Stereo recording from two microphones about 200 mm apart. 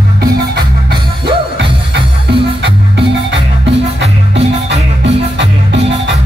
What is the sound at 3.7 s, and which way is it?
Music, 60° right (ahead or behind).